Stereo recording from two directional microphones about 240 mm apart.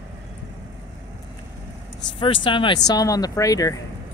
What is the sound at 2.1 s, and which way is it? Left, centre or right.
Speech, left.